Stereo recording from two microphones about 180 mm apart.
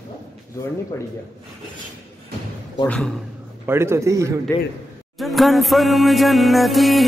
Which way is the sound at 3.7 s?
15° right (ahead or behind).